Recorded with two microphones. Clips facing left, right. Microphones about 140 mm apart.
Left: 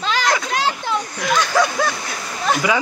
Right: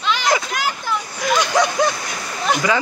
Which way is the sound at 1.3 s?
15° right (ahead or behind).